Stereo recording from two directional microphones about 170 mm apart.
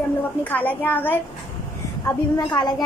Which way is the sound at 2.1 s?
20° left (ahead or behind).